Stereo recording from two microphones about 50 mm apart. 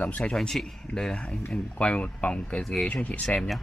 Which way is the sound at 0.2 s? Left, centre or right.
Centre.